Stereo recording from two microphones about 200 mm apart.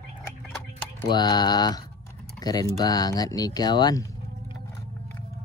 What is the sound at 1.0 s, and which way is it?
Speech, 20° left (ahead or behind).